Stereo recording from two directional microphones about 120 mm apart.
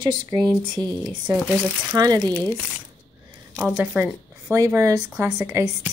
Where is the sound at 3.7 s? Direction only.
15° right (ahead or behind).